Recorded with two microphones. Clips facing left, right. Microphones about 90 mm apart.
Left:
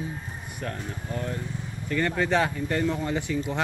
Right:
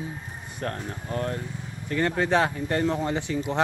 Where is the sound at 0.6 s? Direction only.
45° right (ahead or behind).